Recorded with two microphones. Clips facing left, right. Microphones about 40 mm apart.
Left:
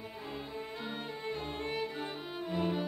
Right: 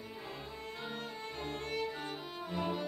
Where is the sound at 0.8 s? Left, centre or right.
Centre.